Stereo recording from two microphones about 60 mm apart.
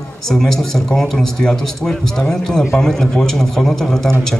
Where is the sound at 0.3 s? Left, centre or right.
Centre.